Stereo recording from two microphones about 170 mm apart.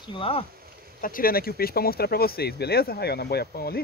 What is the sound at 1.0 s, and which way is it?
Speech, 55° left (ahead or behind).